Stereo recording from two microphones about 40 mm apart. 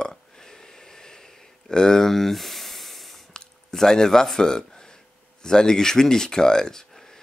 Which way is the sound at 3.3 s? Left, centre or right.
Centre.